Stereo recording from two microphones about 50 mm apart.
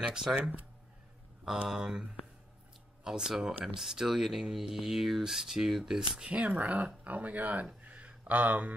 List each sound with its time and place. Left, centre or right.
0.0 s speech: centre
1.7 s speech: centre; by 7.6 s right
7.8 s a sound: right